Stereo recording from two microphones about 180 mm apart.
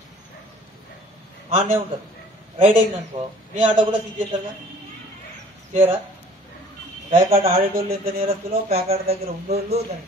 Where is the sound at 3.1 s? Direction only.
20° right (ahead or behind).